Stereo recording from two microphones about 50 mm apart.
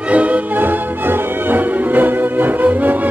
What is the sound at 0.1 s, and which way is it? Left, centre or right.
Music, right.